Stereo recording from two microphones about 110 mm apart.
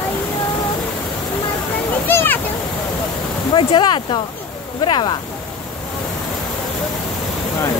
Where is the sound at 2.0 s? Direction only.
20° left (ahead or behind).